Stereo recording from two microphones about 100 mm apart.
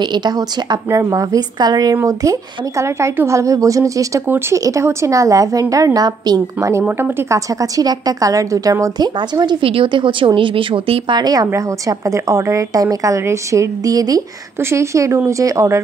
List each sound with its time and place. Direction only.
0.0 s speech: 45° right (ahead or behind)
0.8 s a woman's voice: 30° right (ahead or behind)
2.8 s a woman's voice: 30° right (ahead or behind)
7.0 s a woman's voice: 25° right (ahead or behind); by 9.6 s 45° right (ahead or behind)
9.6 s a woman's voice: 65° right (ahead or behind); by 14.2 s 40° right (ahead or behind)
14.6 s speech: 30° right (ahead or behind)